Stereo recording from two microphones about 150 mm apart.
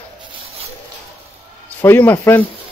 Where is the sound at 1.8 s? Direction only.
15° left (ahead or behind).